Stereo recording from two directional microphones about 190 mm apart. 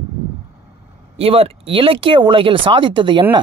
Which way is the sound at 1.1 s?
30° right (ahead or behind).